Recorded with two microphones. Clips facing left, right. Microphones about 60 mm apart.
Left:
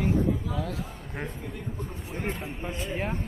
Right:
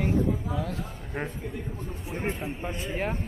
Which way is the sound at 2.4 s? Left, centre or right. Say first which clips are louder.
Right 1 dB; centre.